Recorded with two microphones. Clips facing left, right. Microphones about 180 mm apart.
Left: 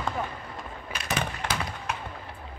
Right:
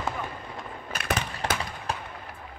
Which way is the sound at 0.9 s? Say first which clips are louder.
Right 1 dB; 55° right (ahead or behind).